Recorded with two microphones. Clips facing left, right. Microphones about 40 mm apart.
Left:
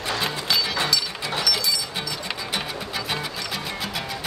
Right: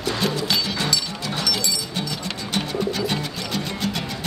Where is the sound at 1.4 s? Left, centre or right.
Centre.